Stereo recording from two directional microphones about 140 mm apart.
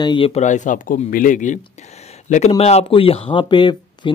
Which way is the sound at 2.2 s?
55° left (ahead or behind).